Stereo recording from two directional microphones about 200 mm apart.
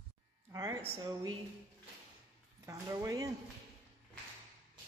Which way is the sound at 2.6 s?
15° right (ahead or behind).